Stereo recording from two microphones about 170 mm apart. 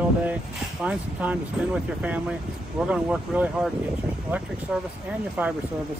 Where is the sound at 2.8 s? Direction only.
10° right (ahead or behind).